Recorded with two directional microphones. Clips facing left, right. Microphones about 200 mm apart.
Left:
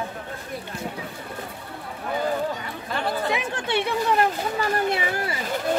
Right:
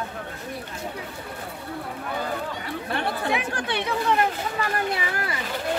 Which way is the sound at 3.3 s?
25° left (ahead or behind).